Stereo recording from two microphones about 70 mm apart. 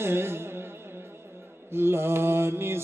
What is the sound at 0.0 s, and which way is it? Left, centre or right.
Music, right.